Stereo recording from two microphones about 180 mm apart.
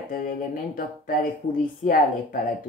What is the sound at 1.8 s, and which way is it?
Speech, 50° left (ahead or behind).